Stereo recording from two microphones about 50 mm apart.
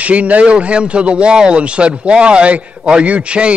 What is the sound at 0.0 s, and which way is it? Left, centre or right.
Speech, right.